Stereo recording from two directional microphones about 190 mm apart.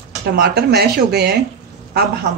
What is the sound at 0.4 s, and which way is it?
Speech, 55° right (ahead or behind).